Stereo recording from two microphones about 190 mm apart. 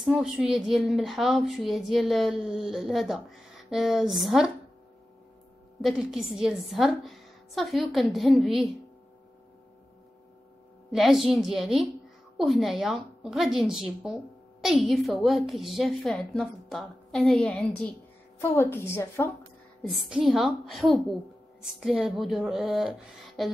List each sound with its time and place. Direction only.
0.0 s a woman's voice: centre (ahead or behind)
5.8 s a woman's voice: centre (ahead or behind)
10.9 s a woman's voice: centre (ahead or behind)
19.8 s a woman's voice: centre (ahead or behind)